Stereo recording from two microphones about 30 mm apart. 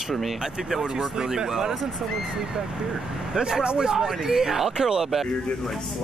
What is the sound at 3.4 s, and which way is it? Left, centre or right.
Speech, right.